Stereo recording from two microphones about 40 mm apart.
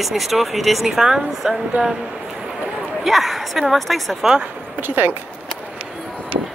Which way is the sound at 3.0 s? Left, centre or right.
Centre.